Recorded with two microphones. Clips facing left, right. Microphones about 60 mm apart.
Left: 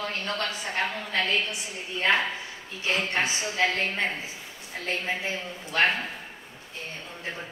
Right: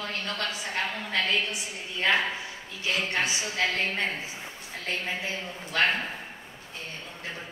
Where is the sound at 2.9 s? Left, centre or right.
Left.